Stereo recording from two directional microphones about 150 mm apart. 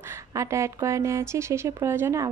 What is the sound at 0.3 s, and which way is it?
Speech, 20° right (ahead or behind).